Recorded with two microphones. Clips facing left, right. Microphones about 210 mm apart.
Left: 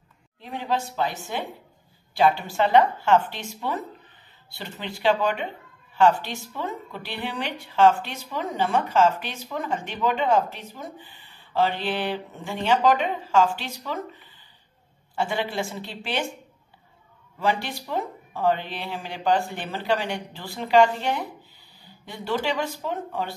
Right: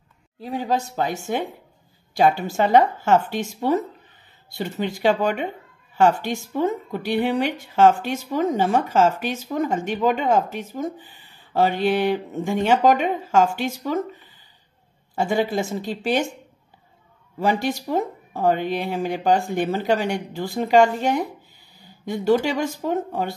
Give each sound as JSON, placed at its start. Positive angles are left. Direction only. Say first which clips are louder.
{"t": 0.4, "sound": "a woman's voice", "louder": "right 4 dB", "side_deg": -40}
{"t": 15.1, "sound": "a woman's voice", "louder": "right 5 dB", "side_deg": -45}
{"t": 17.4, "sound": "a woman's voice", "louder": "right 4 dB", "side_deg": -45}